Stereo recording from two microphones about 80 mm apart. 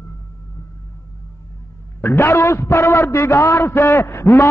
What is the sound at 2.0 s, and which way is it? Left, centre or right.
A man's voice, left.